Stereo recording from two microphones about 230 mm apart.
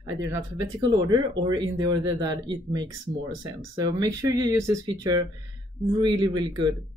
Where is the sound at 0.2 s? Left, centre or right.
Centre.